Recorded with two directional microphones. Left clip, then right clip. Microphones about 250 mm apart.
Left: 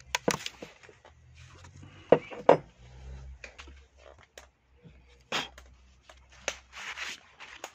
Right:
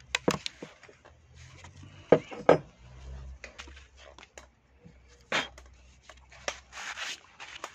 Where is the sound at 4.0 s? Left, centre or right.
Right.